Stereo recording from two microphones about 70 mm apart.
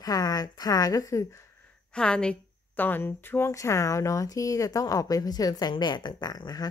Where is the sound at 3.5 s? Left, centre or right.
Left.